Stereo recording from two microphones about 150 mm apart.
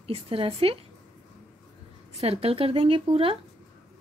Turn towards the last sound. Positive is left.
turn(degrees=-40)  # may be behind; listen again after turning